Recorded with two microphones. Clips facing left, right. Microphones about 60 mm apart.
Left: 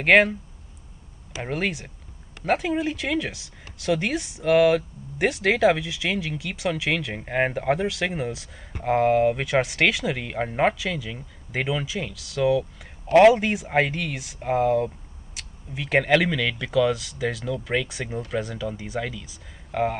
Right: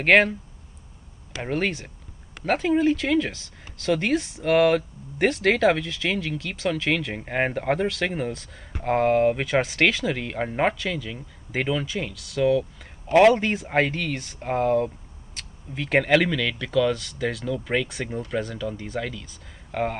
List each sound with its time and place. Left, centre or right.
0.0 s speech: centre
1.4 s speech: centre